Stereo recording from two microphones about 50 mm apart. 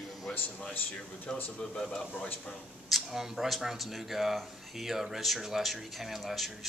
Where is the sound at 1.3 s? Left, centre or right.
Centre.